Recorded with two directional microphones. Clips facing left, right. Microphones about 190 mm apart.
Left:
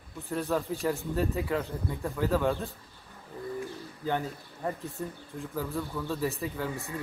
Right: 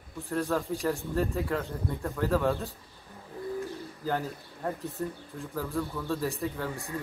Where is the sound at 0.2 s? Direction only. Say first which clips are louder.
Right 1 dB; centre (ahead or behind).